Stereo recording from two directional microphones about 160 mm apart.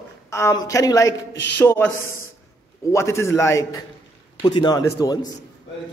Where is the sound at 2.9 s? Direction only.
15° left (ahead or behind).